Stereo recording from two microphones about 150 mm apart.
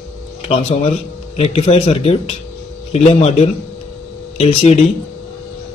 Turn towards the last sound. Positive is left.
turn(degrees=40)  # may be behind; listen again after turning